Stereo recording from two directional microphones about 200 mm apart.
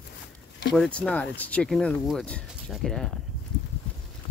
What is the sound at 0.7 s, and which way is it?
Speech, 5° left (ahead or behind).